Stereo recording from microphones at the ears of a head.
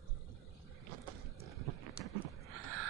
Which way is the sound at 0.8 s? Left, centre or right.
Right.